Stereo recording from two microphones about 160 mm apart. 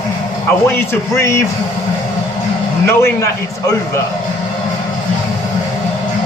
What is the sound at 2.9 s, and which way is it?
Speech, 15° left (ahead or behind).